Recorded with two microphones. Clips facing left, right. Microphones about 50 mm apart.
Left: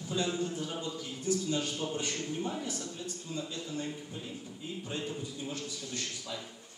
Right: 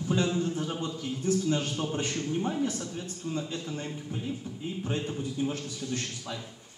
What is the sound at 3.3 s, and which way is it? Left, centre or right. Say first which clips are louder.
Speech: right 3 dB; right.